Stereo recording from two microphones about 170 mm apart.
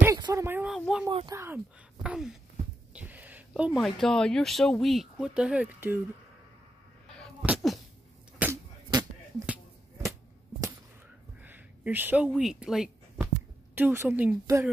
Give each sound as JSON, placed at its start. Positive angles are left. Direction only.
{"t": 0.0, "sound": "a sound", "side_deg": -20}
{"t": 0.7, "sound": "speech", "side_deg": 0}
{"t": 1.1, "sound": "speech", "side_deg": -20}
{"t": 2.0, "sound": "sneeze", "side_deg": -5}
{"t": 2.9, "sound": "speech", "side_deg": -10}
{"t": 7.4, "sound": "sneeze", "side_deg": 0}
{"t": 8.4, "sound": "a sound", "side_deg": -10}
{"t": 11.4, "sound": "a sound", "side_deg": -10}
{"t": 12.3, "sound": "speech", "side_deg": 0}